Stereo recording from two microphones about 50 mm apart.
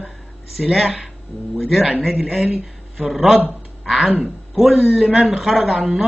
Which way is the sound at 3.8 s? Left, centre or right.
Centre.